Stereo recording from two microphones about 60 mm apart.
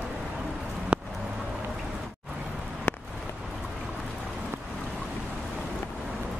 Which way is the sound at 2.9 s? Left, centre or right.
Left.